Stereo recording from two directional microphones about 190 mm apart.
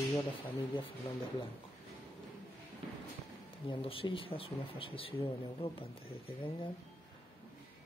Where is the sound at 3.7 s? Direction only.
30° left (ahead or behind).